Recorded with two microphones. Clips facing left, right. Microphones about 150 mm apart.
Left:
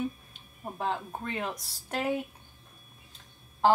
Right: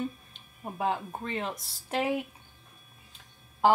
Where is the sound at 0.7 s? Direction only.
5° right (ahead or behind).